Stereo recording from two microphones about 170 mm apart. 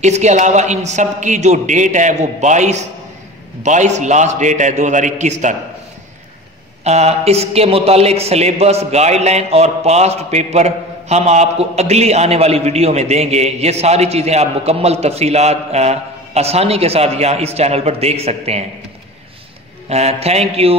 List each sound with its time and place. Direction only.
0.0 s a man's voice: 45° right (ahead or behind)
6.8 s a man's voice: 40° right (ahead or behind)
19.9 s a man's voice: 40° right (ahead or behind)